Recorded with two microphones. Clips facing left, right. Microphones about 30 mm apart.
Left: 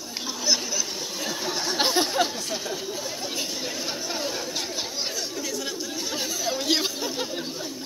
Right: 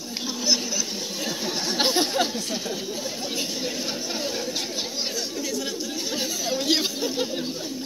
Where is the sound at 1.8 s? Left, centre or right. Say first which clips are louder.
Even; right.